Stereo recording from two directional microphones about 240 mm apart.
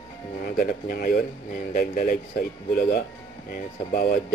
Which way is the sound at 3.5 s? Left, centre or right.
Left.